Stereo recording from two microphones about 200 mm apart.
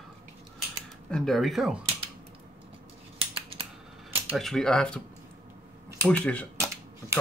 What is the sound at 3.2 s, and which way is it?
Scissors, 25° right (ahead or behind).